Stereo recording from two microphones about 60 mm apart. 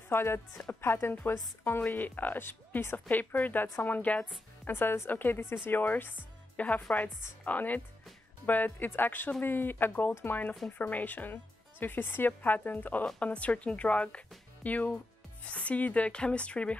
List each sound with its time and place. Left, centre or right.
0.1 s a woman's voice: left
4.6 s a woman's voice: left; by 16.7 s centre